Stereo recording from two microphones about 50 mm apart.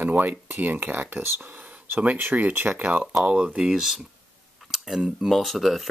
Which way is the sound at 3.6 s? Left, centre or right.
Centre.